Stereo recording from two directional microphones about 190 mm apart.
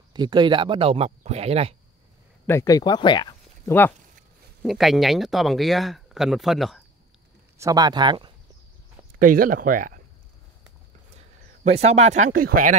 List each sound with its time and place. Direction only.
0.1 s speech: 25° right (ahead or behind)
2.4 s speech: 15° left (ahead or behind)
4.6 s speech: centre (ahead or behind)
7.5 s speech: 20° right (ahead or behind)
9.2 s speech: 45° right (ahead or behind)
11.1 s speech: 35° right (ahead or behind)